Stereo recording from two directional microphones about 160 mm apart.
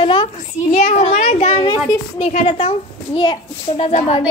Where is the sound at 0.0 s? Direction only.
30° left (ahead or behind).